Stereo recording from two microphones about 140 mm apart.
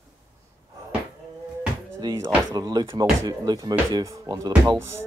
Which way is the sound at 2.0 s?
20° right (ahead or behind).